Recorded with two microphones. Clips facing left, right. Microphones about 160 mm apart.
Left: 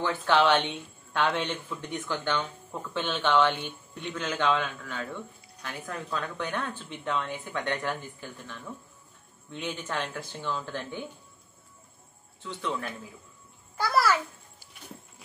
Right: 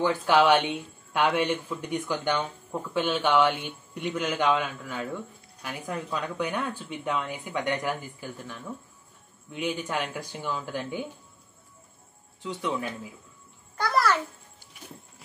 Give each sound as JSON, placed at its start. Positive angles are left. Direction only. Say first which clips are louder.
{"t": 0.0, "sound": "speech", "louder": "right 2 dB", "side_deg": -10}
{"t": 12.4, "sound": "speech", "louder": "right 3 dB", "side_deg": -15}
{"t": 13.7, "sound": "babbling", "louder": "even", "side_deg": 5}